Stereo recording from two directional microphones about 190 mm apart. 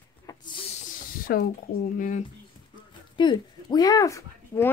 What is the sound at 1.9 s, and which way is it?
Speech, 45° left (ahead or behind).